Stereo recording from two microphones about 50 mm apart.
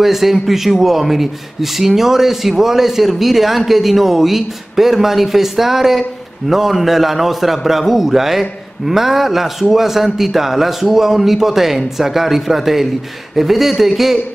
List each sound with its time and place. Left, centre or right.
0.0 s a man's voice: centre